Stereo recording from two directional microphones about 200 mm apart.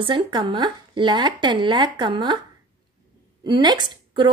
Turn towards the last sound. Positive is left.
turn(degrees=-20)  # may be behind; listen again after turning